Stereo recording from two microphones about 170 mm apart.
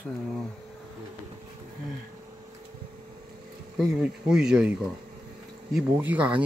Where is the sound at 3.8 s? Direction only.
5° right (ahead or behind).